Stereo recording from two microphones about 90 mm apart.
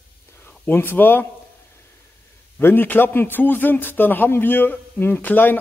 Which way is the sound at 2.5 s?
20° left (ahead or behind).